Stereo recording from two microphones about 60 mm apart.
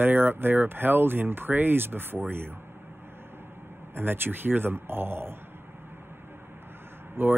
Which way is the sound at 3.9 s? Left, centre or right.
Right.